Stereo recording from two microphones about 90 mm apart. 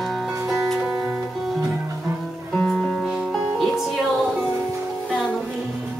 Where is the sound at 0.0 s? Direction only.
5° right (ahead or behind).